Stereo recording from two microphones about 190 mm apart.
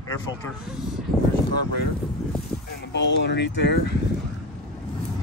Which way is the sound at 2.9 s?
65° left (ahead or behind).